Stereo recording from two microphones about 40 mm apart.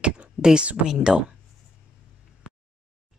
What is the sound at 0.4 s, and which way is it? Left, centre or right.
Speech, centre.